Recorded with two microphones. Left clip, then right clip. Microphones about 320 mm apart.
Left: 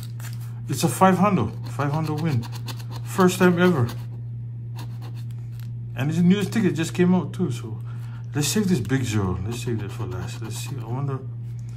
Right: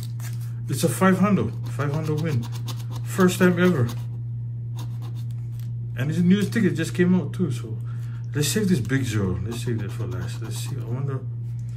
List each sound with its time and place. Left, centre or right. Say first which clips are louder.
0.7 s speech: left 3 dB; centre
5.9 s speech: left 1 dB; centre